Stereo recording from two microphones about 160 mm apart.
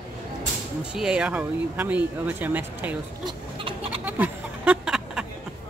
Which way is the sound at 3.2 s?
35° right (ahead or behind).